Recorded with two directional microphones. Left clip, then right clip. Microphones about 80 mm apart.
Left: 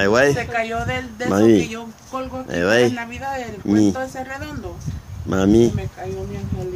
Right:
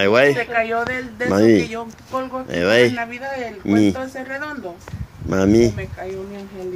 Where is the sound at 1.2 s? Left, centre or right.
Left.